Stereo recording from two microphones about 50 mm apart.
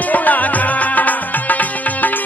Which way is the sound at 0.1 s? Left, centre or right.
Left.